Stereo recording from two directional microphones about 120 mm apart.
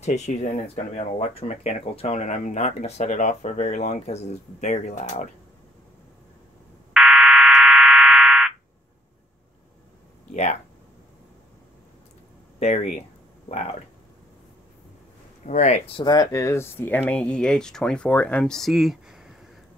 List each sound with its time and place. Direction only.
0.0 s speech: 75° left (ahead or behind)
6.9 s fire alarm: centre (ahead or behind)
10.3 s speech: 75° left (ahead or behind)
12.5 s speech: 65° left (ahead or behind)
15.4 s speech: 75° left (ahead or behind)
15.9 s speech: 35° left (ahead or behind); by 19.3 s 5° right (ahead or behind)